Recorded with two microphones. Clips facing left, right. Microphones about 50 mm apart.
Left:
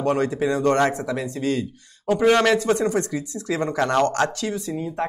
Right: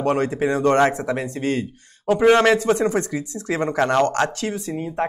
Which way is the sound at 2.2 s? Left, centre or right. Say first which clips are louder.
Right 2 dB; right.